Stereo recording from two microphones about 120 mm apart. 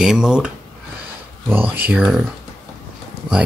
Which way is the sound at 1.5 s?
15° right (ahead or behind).